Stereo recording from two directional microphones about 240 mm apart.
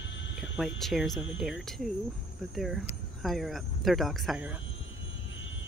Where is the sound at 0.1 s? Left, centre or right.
Left.